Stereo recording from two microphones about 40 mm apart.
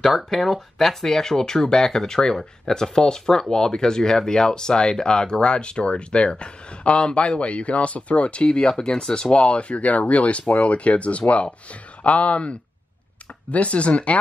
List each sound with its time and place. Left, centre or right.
0.0 s speech: centre; by 14.1 s left